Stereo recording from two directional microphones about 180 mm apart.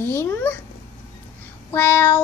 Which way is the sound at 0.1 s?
10° left (ahead or behind).